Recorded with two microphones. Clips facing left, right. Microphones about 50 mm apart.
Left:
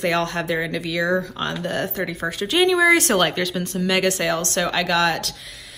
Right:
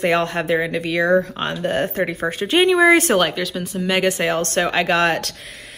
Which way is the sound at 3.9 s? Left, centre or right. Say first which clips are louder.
Right 2 dB; centre.